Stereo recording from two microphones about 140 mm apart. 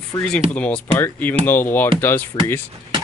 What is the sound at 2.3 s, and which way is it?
Speech, 35° left (ahead or behind).